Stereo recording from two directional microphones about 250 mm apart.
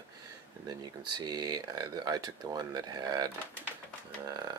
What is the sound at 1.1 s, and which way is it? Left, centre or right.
Speech, centre.